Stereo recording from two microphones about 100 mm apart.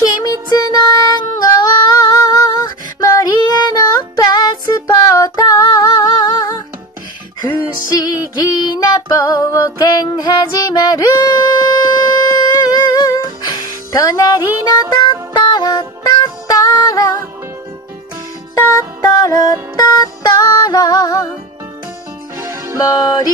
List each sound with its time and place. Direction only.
0.0 s music: 40° left (ahead or behind)
3.0 s female singing: 35° left (ahead or behind)
3.3 s female singing: 50° left (ahead or behind)
3.7 s music: 40° left (ahead or behind)
7.9 s music: 40° left (ahead or behind)
15.0 s music: 50° left (ahead or behind)
16.4 s female singing: 35° left (ahead or behind)
18.5 s music: 40° left (ahead or behind)
22.4 s music: 30° right (ahead or behind)
22.8 s music: 40° left (ahead or behind)